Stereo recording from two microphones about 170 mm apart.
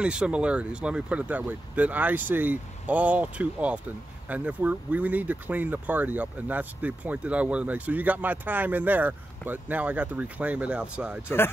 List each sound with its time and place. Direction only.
0.0 s speech: 5° right (ahead or behind)
11.2 s speech: 15° left (ahead or behind)